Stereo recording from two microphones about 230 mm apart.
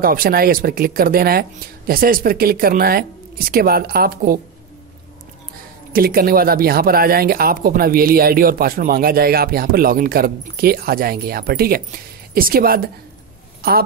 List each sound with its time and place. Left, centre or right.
0.0 s speech: right
5.9 s speech: right